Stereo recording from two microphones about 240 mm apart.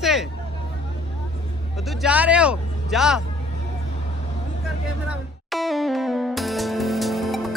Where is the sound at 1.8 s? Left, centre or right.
Centre.